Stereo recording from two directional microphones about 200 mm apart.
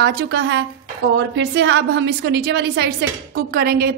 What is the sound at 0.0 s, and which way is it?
A woman's voice, 55° right (ahead or behind).